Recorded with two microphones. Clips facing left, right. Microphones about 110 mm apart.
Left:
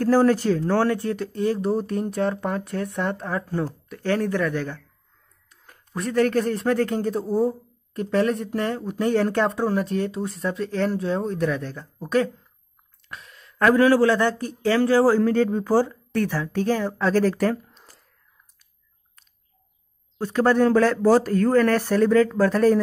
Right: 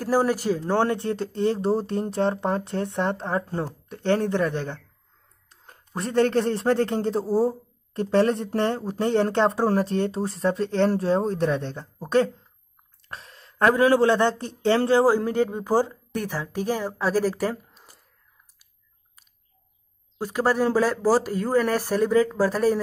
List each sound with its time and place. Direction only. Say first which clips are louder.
0.0 s a man's voice: left 4 dB; 15° right (ahead or behind)
20.2 s speech: left 4 dB; 10° right (ahead or behind)